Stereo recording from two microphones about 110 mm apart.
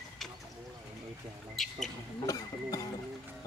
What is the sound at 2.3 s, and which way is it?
Music, 35° left (ahead or behind).